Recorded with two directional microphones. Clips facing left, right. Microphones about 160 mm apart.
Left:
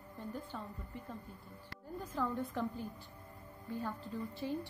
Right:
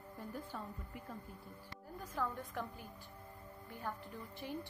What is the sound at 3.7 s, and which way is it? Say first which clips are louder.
Speech: left 5 dB; 15° right (ahead or behind).